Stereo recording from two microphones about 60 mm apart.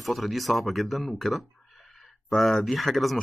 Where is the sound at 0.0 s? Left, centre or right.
Centre.